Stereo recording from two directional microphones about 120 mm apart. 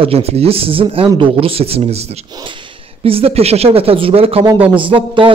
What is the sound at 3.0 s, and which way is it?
A man's voice, 55° right (ahead or behind).